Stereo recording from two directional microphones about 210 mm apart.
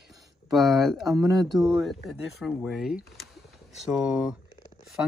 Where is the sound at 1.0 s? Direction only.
15° right (ahead or behind).